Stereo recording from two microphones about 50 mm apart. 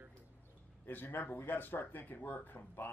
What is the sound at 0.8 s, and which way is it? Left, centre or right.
Speech, left.